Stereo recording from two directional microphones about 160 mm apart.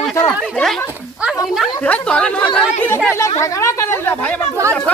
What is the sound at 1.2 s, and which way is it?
Speech, centre (ahead or behind).